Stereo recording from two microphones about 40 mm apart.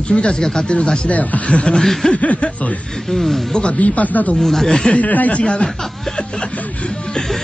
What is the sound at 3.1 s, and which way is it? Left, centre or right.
Music, centre.